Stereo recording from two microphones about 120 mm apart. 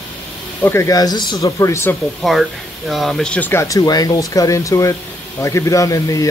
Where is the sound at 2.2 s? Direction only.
Centre (ahead or behind).